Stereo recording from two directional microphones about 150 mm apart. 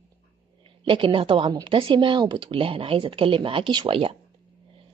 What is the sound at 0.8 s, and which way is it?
A woman's voice, 35° right (ahead or behind).